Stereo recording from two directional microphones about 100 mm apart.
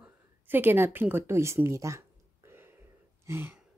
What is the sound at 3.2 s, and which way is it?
Throat clearing, 25° right (ahead or behind).